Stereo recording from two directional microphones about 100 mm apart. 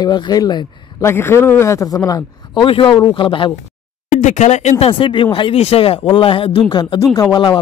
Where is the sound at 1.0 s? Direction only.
25° left (ahead or behind).